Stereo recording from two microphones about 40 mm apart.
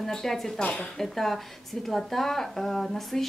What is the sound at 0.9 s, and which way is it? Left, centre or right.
A woman's voice, centre.